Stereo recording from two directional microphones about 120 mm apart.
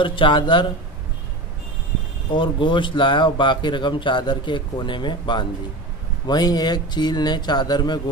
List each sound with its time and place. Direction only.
0.0 s speech: 45° left (ahead or behind)
2.3 s speech: 45° left (ahead or behind)